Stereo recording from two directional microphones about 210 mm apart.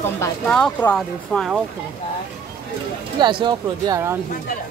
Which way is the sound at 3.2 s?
20° right (ahead or behind).